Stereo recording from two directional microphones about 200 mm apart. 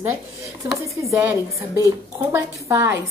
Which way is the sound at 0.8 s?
15° right (ahead or behind).